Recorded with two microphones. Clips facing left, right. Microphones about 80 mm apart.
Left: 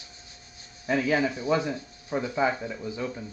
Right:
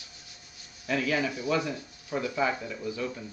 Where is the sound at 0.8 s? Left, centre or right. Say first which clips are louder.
Left 4 dB; left.